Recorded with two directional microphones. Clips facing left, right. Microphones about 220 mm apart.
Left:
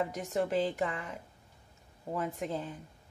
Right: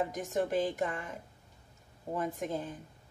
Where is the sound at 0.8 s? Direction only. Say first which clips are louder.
Even; 45° right (ahead or behind).